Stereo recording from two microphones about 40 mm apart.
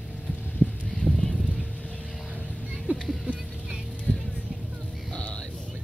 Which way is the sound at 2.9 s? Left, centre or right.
Right.